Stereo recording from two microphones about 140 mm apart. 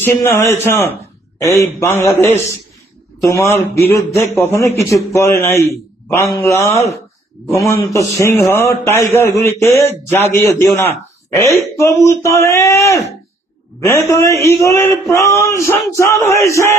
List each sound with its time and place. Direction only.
0.0 s a man's voice: 15° left (ahead or behind)
3.2 s a man's voice: 20° left (ahead or behind)